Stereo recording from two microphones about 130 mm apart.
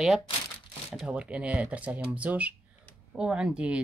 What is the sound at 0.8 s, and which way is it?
Speech, 5° right (ahead or behind).